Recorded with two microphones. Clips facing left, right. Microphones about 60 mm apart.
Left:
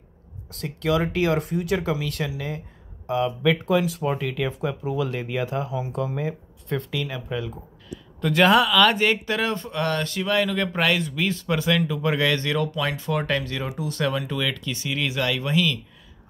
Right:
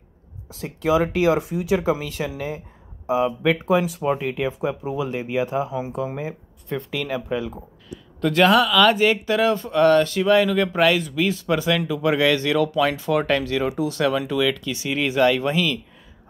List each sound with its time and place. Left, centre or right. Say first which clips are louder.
0.5 s speech: right 3 dB; centre
6.9 s speech: right 4 dB; right
8.2 s speech: right 1 dB; centre
14.0 s speech: right 4 dB; centre
14.8 s speech: right 8 dB; centre